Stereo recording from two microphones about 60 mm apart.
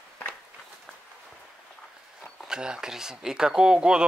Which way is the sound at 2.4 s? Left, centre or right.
Centre.